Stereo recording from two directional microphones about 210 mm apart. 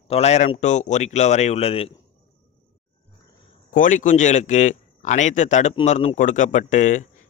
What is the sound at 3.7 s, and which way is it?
A man's voice, 40° left (ahead or behind).